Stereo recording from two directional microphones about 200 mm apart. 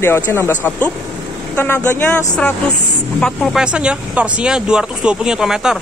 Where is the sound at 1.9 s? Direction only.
10° left (ahead or behind).